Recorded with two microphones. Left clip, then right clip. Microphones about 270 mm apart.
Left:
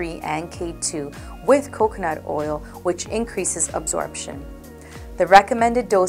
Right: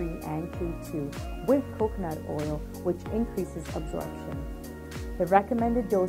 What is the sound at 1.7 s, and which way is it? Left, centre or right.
A woman's voice, centre.